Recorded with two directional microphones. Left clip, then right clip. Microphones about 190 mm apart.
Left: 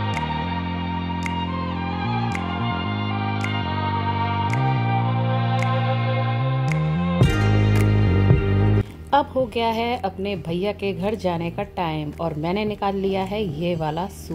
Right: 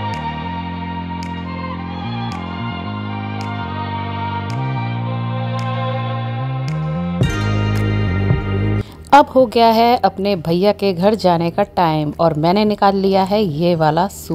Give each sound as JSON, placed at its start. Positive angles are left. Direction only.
{"t": 9.1, "sound": "a woman's voice", "side_deg": -50}